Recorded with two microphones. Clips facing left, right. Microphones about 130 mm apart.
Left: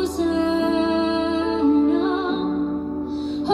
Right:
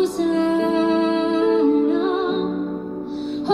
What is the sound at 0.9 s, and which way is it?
Music, 15° left (ahead or behind).